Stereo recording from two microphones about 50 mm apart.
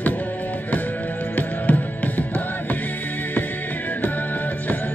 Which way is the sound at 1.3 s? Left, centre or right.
Left.